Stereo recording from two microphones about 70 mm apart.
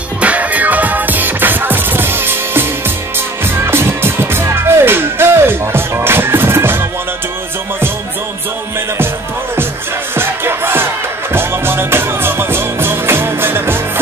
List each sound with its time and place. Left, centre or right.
0.2 s music: centre
3.6 s music: right
10.1 s music: right